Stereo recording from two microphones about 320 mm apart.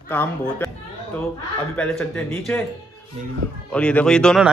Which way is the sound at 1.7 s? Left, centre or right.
Centre.